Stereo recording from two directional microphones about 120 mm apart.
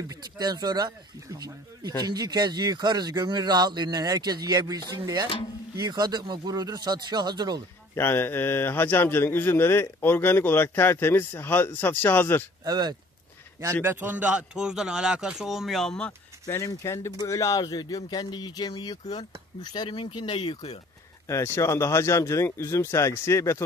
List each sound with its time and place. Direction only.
0.1 s a man's voice: 35° right (ahead or behind)
7.9 s a man's voice: 20° left (ahead or behind)
12.6 s a man's voice: 35° right (ahead or behind)
13.8 s a man's voice: 15° right (ahead or behind); by 16.1 s 5° left (ahead or behind)
16.4 s speech: 25° left (ahead or behind); by 20.8 s 50° left (ahead or behind)
21.3 s speech: 25° left (ahead or behind)